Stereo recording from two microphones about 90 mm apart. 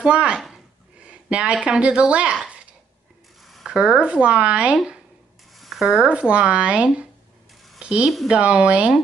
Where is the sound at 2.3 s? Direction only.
10° right (ahead or behind).